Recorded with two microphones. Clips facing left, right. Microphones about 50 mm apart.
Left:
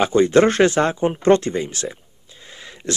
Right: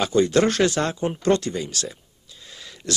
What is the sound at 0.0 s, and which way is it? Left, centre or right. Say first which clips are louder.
Speech: left 4 dB; left.